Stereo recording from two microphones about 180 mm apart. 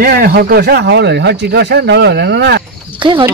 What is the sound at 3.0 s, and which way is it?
Speech, 30° right (ahead or behind).